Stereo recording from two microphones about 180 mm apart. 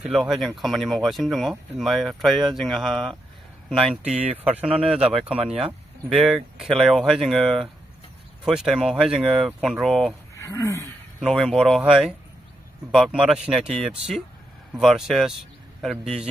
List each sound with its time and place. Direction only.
0.0 s speech: centre (ahead or behind)
10.3 s speech: 15° left (ahead or behind)
11.1 s speech: centre (ahead or behind)
13.5 s speech: centre (ahead or behind)